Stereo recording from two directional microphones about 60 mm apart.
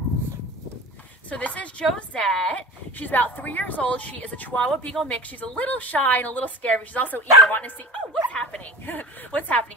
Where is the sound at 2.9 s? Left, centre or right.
Left.